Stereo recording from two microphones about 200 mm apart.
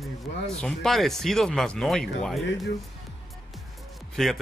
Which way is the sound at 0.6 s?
Centre (ahead or behind).